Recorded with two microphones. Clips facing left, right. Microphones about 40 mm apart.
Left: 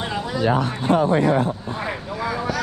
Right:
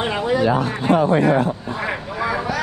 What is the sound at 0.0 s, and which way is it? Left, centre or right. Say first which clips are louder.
Speech: right 4 dB; right.